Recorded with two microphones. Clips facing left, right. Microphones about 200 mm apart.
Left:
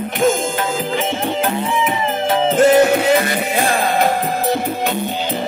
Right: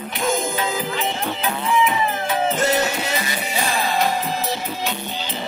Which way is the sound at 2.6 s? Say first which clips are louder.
Left 10 dB; 55° left (ahead or behind).